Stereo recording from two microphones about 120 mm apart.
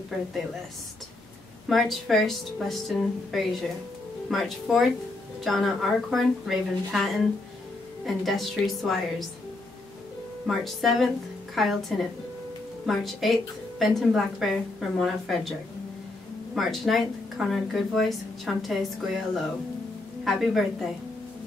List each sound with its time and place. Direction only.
1.7 s speech: centre (ahead or behind)
10.4 s speech: centre (ahead or behind)
16.5 s speech: centre (ahead or behind)